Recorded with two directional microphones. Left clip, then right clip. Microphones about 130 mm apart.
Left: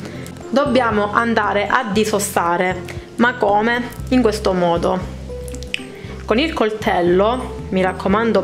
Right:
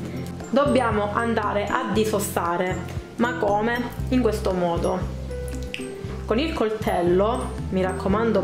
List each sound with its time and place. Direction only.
0.6 s a woman's voice: 30° left (ahead or behind)
6.2 s a woman's voice: 20° left (ahead or behind)